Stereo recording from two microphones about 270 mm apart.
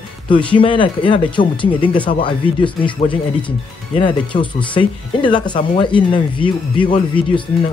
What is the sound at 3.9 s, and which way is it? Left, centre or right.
Speech, centre.